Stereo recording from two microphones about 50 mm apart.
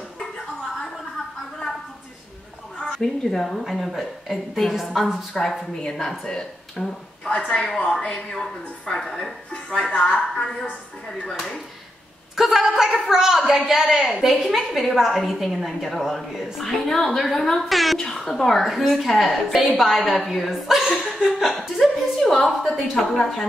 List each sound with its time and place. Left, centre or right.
3.0 s a woman's voice: centre
5.4 s speech: centre
7.4 s a woman's voice: left
7.8 s speech: centre
9.9 s a woman's voice: left
12.4 s a woman's voice: centre
21.0 s laughter: centre
21.4 s a woman's voice: centre